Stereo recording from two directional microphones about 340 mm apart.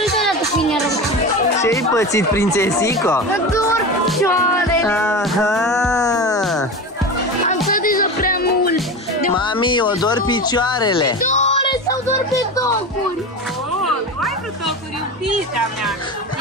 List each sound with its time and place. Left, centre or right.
0.6 s music: centre
7.4 s music: left
9.4 s music: centre